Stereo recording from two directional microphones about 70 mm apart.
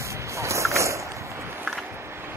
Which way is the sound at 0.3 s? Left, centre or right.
Right.